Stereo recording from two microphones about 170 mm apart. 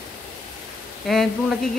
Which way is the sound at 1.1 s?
Centre (ahead or behind).